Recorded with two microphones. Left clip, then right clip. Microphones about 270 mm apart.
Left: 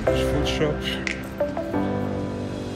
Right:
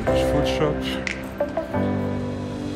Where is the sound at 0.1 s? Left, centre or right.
Centre.